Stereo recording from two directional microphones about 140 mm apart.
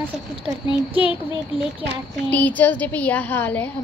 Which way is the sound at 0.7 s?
40° left (ahead or behind).